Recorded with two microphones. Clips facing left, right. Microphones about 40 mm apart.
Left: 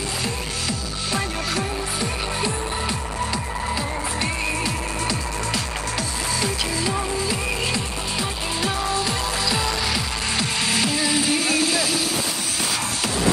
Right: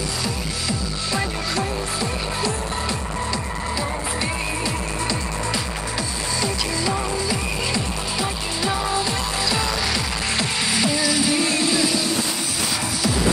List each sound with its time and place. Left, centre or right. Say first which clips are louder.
7.2 s music: even; centre
8.6 s music: right 2 dB; centre
11.0 s music: right 1 dB; centre
11.3 s music: even; centre